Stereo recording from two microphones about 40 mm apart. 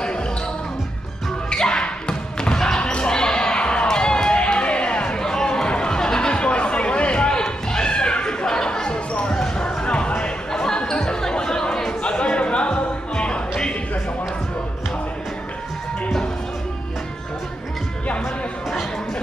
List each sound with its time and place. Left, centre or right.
1.5 s basketball bounce: left
3.1 s music: centre
9.6 s chatter: left
12.0 s music: left